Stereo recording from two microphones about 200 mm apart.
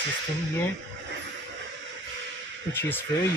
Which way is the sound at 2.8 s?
10° left (ahead or behind).